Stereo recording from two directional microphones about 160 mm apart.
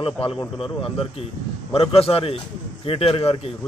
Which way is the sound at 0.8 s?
35° left (ahead or behind).